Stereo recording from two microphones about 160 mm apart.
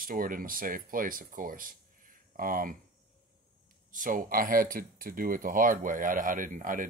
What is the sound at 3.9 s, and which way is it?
Speech, 55° right (ahead or behind).